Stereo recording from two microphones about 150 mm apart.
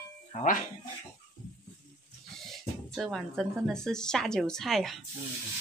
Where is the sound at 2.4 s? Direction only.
Centre (ahead or behind).